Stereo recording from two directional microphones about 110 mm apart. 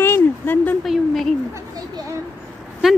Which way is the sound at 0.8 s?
5° left (ahead or behind).